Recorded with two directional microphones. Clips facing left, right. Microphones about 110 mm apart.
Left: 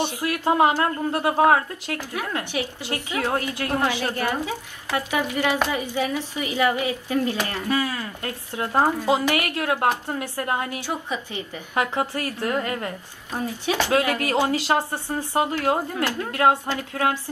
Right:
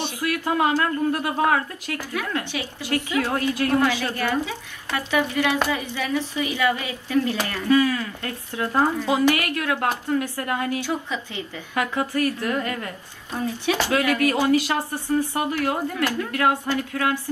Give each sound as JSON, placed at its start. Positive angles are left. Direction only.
{"t": 0.0, "sound": "a woman's voice", "side_deg": 20}